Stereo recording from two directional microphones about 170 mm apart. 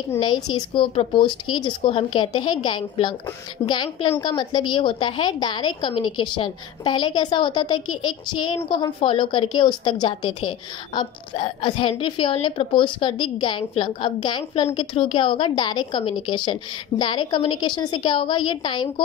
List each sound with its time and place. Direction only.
0.2 s a woman's voice: 25° left (ahead or behind)